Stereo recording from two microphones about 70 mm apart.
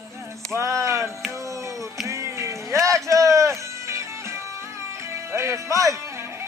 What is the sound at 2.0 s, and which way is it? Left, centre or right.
Music, right.